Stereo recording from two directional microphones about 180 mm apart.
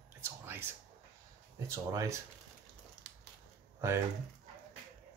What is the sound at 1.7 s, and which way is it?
Speech, 15° right (ahead or behind).